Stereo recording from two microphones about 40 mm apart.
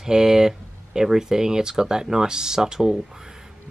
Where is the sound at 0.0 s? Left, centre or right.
Centre.